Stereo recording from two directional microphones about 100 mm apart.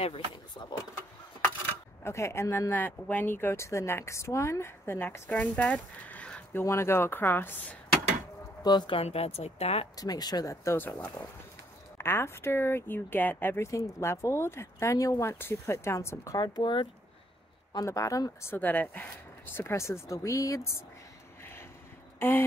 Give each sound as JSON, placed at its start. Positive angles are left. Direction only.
{"t": 0.6, "sound": "speech", "side_deg": 55}
{"t": 2.0, "sound": "speech", "side_deg": 30}
{"t": 2.7, "sound": "speech", "side_deg": 20}
{"t": 6.5, "sound": "speech", "side_deg": 25}
{"t": 8.6, "sound": "speech", "side_deg": 45}
{"t": 8.9, "sound": "speech", "side_deg": 90}
{"t": 9.9, "sound": "speech", "side_deg": 40}
{"t": 16.3, "sound": "speech", "side_deg": 45}
{"t": 17.7, "sound": "speech", "side_deg": 35}
{"t": 18.5, "sound": "speech", "side_deg": 20}